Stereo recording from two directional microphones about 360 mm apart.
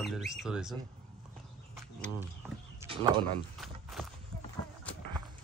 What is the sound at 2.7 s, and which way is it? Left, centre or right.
Bird, centre.